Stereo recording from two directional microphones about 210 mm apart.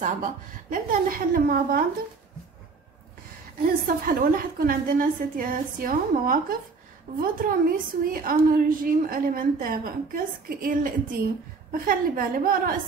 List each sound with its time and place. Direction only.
0.0 s a woman's voice: 40° right (ahead or behind)
3.6 s a woman's voice: 45° right (ahead or behind)